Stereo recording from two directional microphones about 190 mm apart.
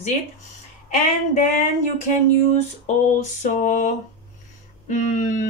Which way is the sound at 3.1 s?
40° left (ahead or behind).